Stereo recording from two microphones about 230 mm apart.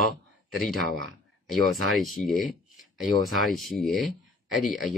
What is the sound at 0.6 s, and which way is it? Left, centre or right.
Speech, centre.